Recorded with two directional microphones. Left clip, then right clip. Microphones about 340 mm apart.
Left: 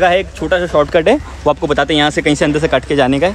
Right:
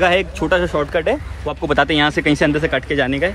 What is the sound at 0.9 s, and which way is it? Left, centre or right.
Speech, left.